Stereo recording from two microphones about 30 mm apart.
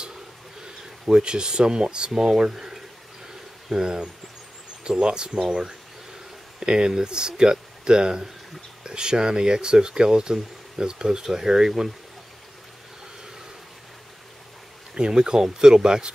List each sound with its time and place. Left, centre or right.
1.0 s speech: right
3.7 s speech: right
15.0 s speech: right